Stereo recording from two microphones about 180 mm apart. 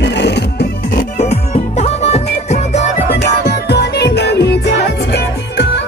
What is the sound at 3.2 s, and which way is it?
Music, 65° left (ahead or behind).